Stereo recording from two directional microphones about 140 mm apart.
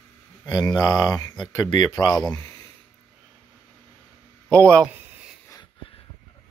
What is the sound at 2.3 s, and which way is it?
Speech, 20° left (ahead or behind).